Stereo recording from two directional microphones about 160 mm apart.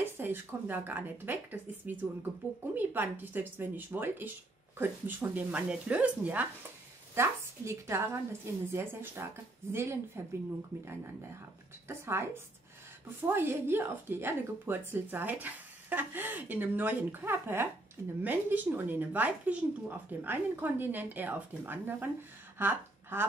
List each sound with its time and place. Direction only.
0.2 s a woman's voice: 15° right (ahead or behind)
11.9 s a woman's voice: 15° right (ahead or behind)